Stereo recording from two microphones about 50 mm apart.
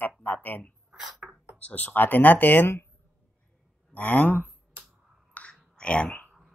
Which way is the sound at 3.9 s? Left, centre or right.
Left.